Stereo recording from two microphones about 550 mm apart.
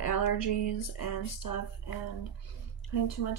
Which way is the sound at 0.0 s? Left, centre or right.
Left.